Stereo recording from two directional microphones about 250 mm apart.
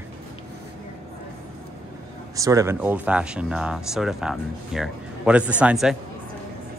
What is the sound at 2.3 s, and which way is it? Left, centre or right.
Speech, centre.